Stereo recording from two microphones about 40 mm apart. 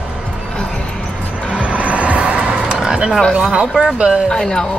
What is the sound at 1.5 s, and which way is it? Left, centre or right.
Train, right.